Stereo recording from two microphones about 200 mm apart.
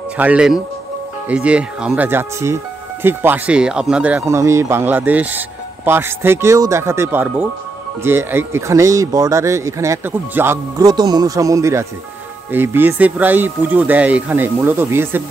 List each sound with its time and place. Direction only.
0.2 s speech: 5° right (ahead or behind)